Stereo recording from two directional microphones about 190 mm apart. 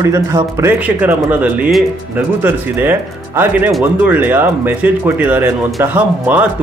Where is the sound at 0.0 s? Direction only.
15° right (ahead or behind).